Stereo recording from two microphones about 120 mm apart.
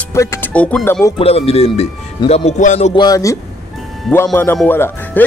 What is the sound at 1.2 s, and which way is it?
Speech, 55° left (ahead or behind).